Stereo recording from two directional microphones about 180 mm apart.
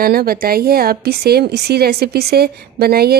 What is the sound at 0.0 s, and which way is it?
Speech, 55° right (ahead or behind).